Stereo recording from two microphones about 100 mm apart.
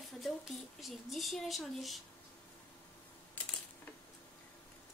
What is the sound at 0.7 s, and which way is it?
Speech, centre (ahead or behind).